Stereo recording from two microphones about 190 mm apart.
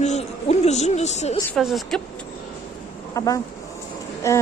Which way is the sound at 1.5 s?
Centre (ahead or behind).